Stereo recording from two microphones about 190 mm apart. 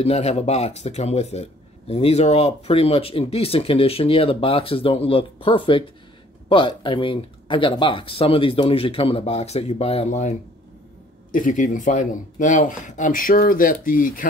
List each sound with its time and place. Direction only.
0.0 s speech: 35° left (ahead or behind)
11.3 s speech: 45° left (ahead or behind)